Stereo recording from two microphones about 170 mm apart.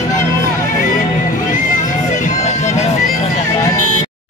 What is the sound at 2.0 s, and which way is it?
Music, 45° left (ahead or behind).